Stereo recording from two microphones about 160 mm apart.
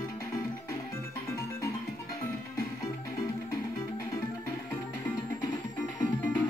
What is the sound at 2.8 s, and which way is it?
Music, 20° left (ahead or behind).